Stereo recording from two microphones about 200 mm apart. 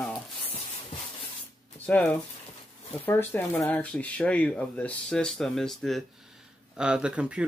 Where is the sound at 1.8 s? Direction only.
5° left (ahead or behind).